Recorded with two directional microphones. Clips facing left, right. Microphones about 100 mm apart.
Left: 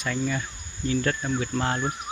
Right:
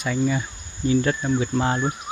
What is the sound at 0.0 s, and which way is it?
Cricket, 10° right (ahead or behind).